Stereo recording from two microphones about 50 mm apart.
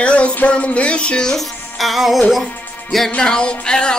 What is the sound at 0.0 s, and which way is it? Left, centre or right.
Music, left.